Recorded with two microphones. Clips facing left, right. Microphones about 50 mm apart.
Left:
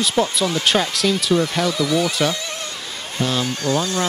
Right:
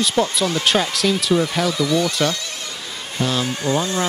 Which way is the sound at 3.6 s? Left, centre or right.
Centre.